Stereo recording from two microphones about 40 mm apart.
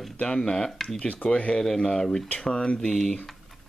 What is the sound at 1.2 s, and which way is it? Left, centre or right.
Speech, left.